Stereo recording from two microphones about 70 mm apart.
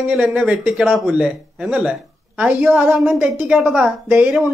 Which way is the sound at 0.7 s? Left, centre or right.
Centre.